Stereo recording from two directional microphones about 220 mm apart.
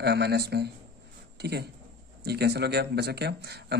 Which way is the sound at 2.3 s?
50° right (ahead or behind).